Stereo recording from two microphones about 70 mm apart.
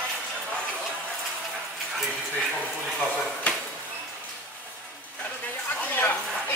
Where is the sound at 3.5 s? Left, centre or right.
Centre.